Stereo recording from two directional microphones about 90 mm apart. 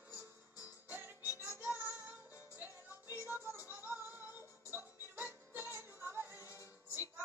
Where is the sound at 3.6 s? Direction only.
20° right (ahead or behind).